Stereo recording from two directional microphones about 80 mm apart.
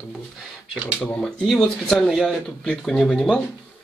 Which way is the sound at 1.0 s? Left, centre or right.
Left.